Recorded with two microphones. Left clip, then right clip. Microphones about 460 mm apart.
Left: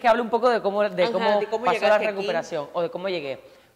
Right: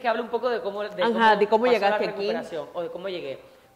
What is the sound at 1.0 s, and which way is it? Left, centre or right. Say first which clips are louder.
Speech: right 5 dB; right.